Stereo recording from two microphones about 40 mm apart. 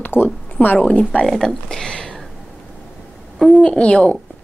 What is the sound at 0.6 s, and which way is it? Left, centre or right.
Speech, left.